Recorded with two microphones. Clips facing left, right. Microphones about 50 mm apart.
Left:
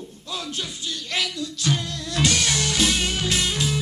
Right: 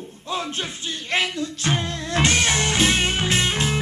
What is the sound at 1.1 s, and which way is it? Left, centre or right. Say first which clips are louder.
Music: right 5 dB; right.